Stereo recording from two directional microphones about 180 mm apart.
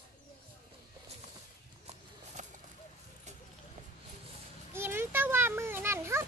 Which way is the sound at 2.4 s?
45° right (ahead or behind).